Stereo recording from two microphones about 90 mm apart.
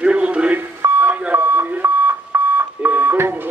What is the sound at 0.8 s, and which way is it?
Alarm clock, 25° right (ahead or behind).